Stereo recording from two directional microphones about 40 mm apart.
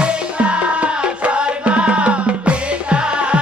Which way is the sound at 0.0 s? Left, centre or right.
Right.